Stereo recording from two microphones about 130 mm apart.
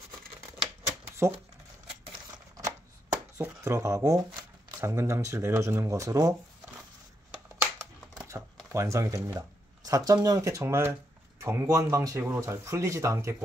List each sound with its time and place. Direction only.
2.3 s shuffling cards: 30° right (ahead or behind)
3.3 s speech: 20° right (ahead or behind)
8.3 s a sound: 25° right (ahead or behind)
8.7 s speech: 25° right (ahead or behind)